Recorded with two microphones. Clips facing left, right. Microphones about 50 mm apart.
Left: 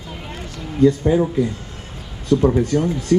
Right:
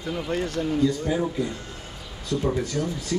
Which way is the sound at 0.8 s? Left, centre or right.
Left.